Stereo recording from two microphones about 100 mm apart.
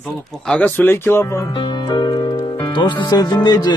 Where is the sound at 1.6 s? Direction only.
50° left (ahead or behind).